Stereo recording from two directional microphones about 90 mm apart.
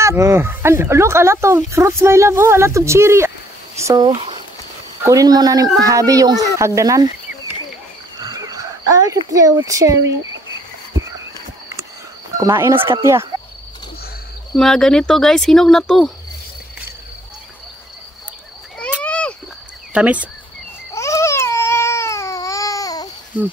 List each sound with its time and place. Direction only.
0.0 s speech: 30° right (ahead or behind)
5.0 s speech: 40° right (ahead or behind)
8.2 s a sound: 45° right (ahead or behind)
9.7 s speech: 35° right (ahead or behind)
12.4 s speech: 35° right (ahead or behind)
14.5 s speech: 5° left (ahead or behind)
19.0 s a sound: 10° left (ahead or behind)
19.9 s speech: 15° right (ahead or behind)
20.9 s baby cry: 35° left (ahead or behind)